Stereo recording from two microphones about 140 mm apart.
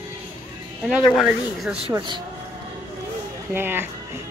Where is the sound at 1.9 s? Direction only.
35° right (ahead or behind).